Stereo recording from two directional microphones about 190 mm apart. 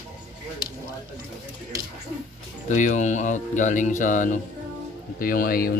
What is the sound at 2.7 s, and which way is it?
Speech, 40° left (ahead or behind).